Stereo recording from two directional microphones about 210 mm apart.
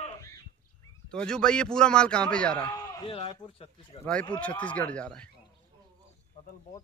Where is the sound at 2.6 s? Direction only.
15° left (ahead or behind).